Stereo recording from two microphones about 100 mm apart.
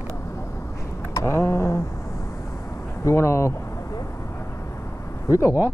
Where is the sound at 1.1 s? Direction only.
25° left (ahead or behind).